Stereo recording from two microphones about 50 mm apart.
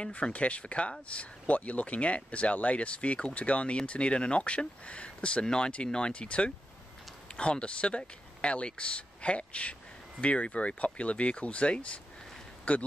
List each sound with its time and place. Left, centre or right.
0.0 s speech: left